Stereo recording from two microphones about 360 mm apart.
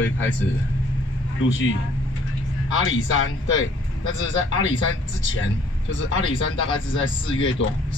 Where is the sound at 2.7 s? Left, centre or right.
Left.